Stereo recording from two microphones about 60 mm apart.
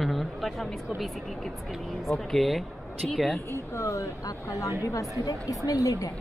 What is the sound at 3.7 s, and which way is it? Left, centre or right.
A woman's voice, left.